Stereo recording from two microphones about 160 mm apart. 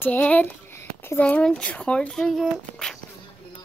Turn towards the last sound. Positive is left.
turn(degrees=0)  # may be behind; listen again after turning